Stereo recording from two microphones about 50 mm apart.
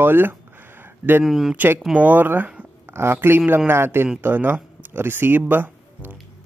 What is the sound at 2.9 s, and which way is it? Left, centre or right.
A man's voice, right.